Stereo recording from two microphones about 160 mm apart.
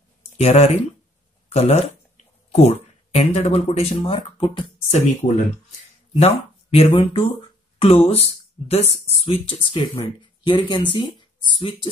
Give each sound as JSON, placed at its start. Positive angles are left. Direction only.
{"t": 0.4, "sound": "speech", "side_deg": 40}
{"t": 6.1, "sound": "speech", "side_deg": 40}